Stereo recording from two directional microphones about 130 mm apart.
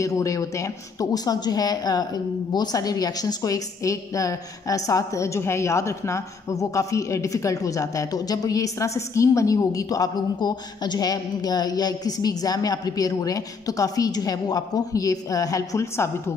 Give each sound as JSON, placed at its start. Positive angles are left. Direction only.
{"t": 0.0, "sound": "a woman's voice", "side_deg": 25}